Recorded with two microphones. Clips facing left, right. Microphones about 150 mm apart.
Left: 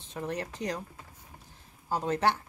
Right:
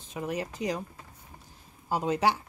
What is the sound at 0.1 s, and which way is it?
Speech, 5° right (ahead or behind).